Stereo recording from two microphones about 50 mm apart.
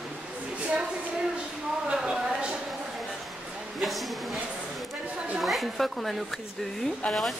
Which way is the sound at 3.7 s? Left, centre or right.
Centre.